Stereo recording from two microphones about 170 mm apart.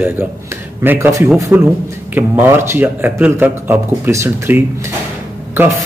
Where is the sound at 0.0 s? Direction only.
10° right (ahead or behind).